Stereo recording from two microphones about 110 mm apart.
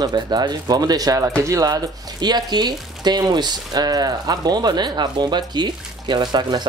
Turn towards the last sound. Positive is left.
turn(degrees=-40)  # may be behind; listen again after turning